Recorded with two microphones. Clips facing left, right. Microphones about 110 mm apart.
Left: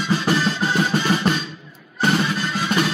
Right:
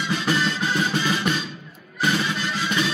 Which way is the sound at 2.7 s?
45° left (ahead or behind).